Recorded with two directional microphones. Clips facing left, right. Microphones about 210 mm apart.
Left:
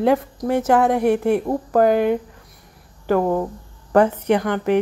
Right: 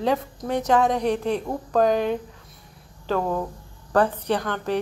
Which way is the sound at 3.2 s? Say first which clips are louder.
Left 6 dB; 20° left (ahead or behind).